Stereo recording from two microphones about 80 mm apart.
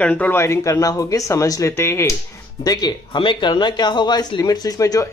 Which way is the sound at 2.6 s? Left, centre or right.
Left.